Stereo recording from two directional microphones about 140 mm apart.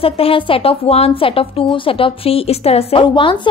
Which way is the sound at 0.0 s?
40° left (ahead or behind).